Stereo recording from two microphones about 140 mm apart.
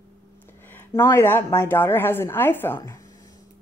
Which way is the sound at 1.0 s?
20° left (ahead or behind).